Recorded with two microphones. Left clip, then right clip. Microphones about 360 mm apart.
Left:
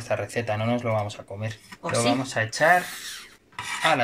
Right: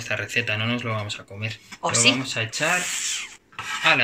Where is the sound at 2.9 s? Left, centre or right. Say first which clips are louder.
Right 9 dB; centre.